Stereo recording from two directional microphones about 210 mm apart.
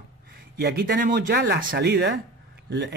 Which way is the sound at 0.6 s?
45° right (ahead or behind).